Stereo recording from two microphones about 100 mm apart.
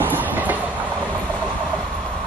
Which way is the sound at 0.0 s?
20° right (ahead or behind).